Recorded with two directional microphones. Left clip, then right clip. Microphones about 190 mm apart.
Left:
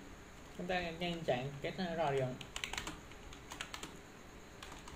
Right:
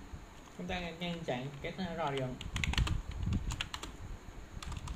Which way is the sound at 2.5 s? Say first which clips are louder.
Right 7 dB; 30° right (ahead or behind).